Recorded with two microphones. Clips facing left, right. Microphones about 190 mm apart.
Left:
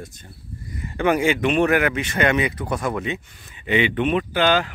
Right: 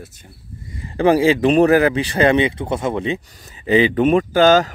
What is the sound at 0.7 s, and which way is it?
Speech, 30° right (ahead or behind).